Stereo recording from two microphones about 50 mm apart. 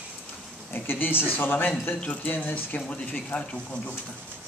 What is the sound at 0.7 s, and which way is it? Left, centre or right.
Speech, left.